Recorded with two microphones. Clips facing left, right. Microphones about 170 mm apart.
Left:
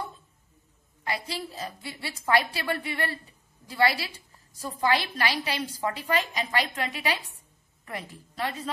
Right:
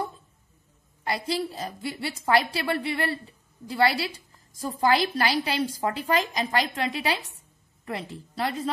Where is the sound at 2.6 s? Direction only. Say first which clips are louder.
Right 3 dB; 30° right (ahead or behind).